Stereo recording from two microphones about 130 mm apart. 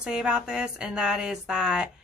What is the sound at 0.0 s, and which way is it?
Speech, 5° right (ahead or behind).